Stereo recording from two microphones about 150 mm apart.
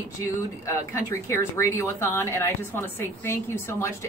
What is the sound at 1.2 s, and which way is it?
A woman's voice, 15° left (ahead or behind).